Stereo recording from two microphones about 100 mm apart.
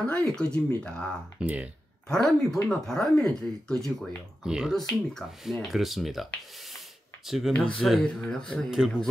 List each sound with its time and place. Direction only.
0.0 s speech: 10° left (ahead or behind)
1.4 s speech: 15° right (ahead or behind)
2.0 s speech: 5° left (ahead or behind)
4.4 s speech: 5° right (ahead or behind)
4.7 s speech: 5° left (ahead or behind)
7.2 s speech: centre (ahead or behind)
7.5 s speech: 10° left (ahead or behind)
8.6 s speech: 5° right (ahead or behind)